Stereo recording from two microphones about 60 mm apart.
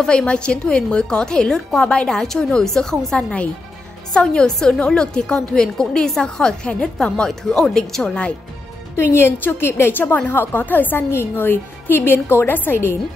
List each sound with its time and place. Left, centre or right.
0.0 s a woman's voice: centre
9.4 s a woman's voice: left